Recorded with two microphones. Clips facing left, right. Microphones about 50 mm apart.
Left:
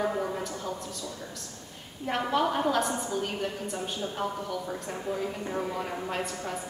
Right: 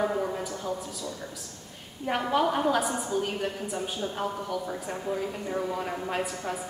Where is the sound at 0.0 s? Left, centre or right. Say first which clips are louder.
Right 1 dB; centre.